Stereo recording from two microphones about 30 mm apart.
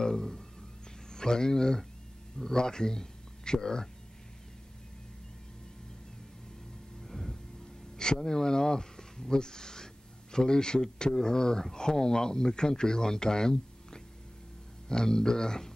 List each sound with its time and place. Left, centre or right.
0.0 s music: centre
1.1 s speech: left
7.0 s music: centre
8.0 s speech: left